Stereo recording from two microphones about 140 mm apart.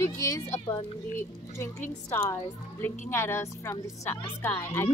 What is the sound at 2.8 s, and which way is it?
A woman's voice, 15° left (ahead or behind).